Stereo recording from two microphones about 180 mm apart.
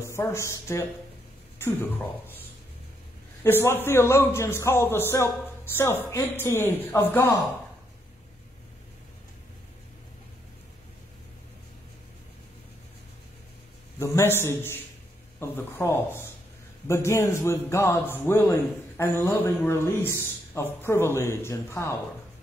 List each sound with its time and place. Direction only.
0.1 s a man's voice: 15° left (ahead or behind)
3.4 s a man's voice: 10° left (ahead or behind)
13.9 s a man's voice: 15° left (ahead or behind)